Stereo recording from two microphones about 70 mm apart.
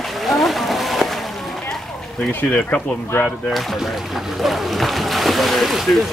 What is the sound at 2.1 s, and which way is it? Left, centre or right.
Speech, centre.